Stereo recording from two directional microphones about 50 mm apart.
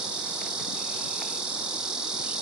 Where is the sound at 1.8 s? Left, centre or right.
Centre.